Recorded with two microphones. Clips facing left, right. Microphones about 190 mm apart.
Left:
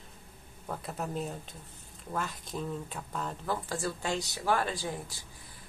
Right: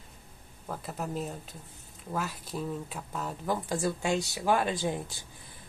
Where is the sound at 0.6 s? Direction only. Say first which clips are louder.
Right 1 dB; centre (ahead or behind).